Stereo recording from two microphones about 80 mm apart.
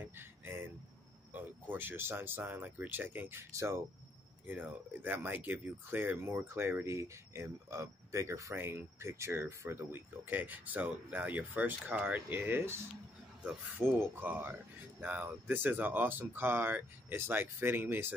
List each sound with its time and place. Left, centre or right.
0.0 s a sound: right
1.3 s speech: right
4.5 s speech: right